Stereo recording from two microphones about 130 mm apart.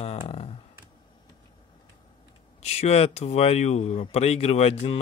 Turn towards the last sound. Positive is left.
turn(degrees=50)  # may be behind; listen again after turning